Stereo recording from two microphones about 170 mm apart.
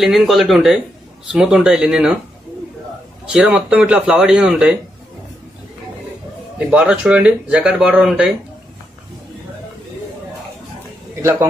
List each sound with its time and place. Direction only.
0.0 s speech: centre (ahead or behind)
3.3 s speech: 5° right (ahead or behind)
6.7 s speech: 5° right (ahead or behind)